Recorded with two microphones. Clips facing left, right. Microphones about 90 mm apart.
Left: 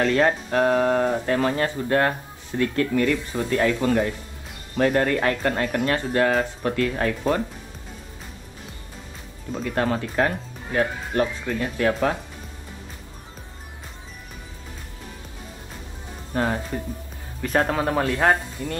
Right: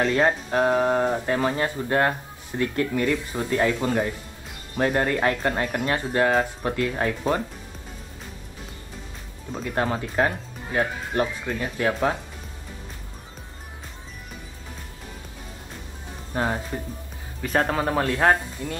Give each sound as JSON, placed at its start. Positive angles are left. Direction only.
{"t": 0.0, "sound": "speech", "side_deg": -10}
{"t": 9.7, "sound": "speech", "side_deg": -15}
{"t": 16.3, "sound": "speech", "side_deg": -10}